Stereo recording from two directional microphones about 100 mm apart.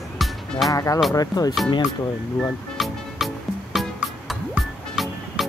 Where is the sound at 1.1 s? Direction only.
40° left (ahead or behind).